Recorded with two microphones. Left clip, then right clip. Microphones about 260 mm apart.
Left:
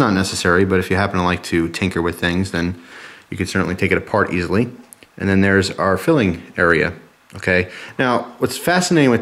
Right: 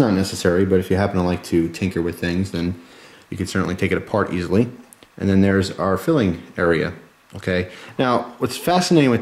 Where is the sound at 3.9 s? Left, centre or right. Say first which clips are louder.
Left 5 dB; left.